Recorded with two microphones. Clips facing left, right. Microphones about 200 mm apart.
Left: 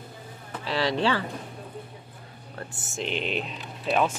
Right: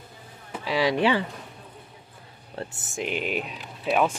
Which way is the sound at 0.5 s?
10° right (ahead or behind).